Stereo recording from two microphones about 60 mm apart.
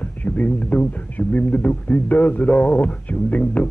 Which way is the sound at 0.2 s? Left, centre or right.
Left.